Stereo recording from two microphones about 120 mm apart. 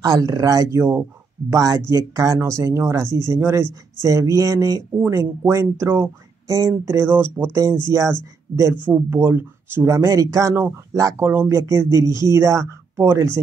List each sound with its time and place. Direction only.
0.0 s speech: 30° right (ahead or behind)